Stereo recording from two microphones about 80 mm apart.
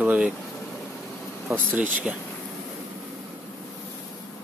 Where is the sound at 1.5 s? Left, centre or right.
Centre.